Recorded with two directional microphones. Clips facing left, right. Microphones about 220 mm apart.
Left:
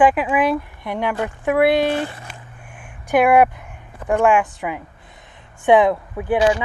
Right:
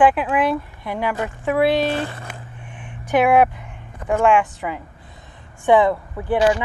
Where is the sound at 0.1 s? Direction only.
5° left (ahead or behind).